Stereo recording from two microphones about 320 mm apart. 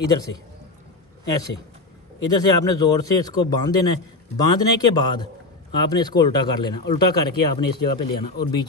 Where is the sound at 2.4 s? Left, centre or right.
Centre.